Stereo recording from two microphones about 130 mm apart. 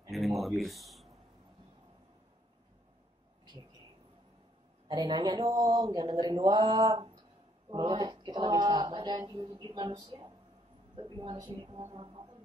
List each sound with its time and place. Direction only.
0.1 s speech: centre (ahead or behind)
4.8 s speech: 35° right (ahead or behind)